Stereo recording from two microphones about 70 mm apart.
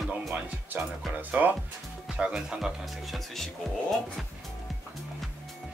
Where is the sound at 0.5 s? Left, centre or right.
Centre.